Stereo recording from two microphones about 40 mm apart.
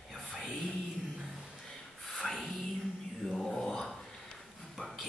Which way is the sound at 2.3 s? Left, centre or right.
Centre.